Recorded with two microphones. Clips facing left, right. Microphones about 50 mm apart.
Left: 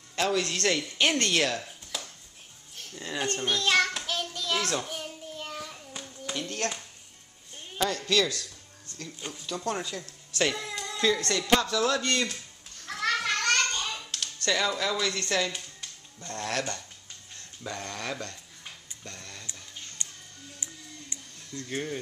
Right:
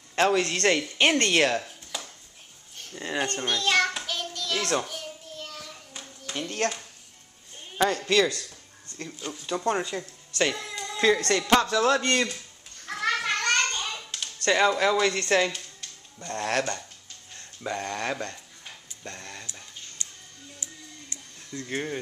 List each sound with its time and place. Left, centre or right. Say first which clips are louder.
0.1 s speech: right 5 dB; right
2.9 s speech: right 4 dB; right
3.4 s a sound: even; centre
6.6 s speech: right 4 dB; right
10.3 s music: right 1 dB; centre
11.2 s a man's voice: right 3 dB; right
12.8 s children playing: right 1 dB; centre
14.4 s speech: right 6 dB; right
17.6 s speech: right 5 dB; right
18.7 s a sound: right 4 dB; right
20.6 s music: even; left
21.5 s speech: right 2 dB; centre